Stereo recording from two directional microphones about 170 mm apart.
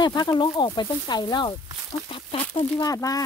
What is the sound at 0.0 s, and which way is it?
Speech, 25° left (ahead or behind).